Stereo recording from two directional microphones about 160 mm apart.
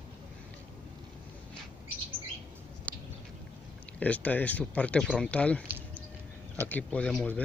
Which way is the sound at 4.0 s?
10° left (ahead or behind).